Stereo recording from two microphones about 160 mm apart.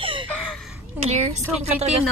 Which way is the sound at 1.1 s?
45° right (ahead or behind).